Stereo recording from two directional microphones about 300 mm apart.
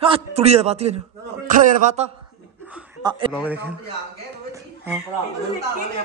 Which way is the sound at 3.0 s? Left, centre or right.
Centre.